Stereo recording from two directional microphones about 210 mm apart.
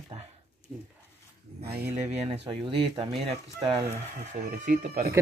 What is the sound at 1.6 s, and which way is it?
Speech, 50° right (ahead or behind).